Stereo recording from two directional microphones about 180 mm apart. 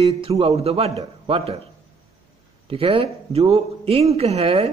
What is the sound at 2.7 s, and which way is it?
A man's voice, 30° right (ahead or behind).